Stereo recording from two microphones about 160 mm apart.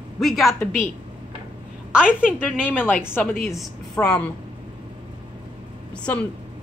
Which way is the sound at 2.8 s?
15° left (ahead or behind).